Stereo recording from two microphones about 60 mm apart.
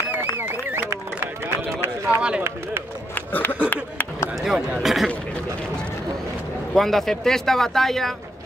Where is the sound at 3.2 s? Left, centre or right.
Left.